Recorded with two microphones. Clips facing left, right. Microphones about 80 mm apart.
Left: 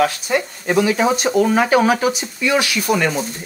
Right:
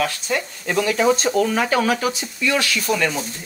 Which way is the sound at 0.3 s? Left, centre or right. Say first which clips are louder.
Left 4 dB; left.